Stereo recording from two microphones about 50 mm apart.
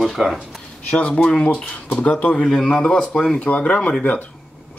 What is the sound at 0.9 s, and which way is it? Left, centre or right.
Speech, left.